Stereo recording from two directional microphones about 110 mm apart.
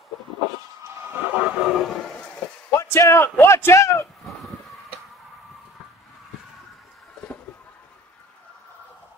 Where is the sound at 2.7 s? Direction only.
25° left (ahead or behind).